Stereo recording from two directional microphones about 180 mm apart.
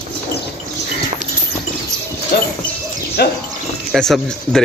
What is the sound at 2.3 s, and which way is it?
Speech, 60° left (ahead or behind).